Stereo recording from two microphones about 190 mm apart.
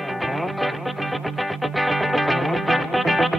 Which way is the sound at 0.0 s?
Centre (ahead or behind).